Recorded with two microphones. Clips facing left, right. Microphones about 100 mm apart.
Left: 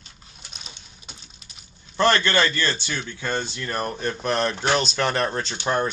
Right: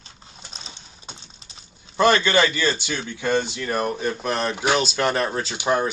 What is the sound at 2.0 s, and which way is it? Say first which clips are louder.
Speech: right 2 dB; 15° right (ahead or behind).